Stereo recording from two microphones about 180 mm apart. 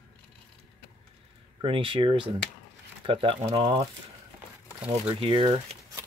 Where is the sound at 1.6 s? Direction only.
30° right (ahead or behind).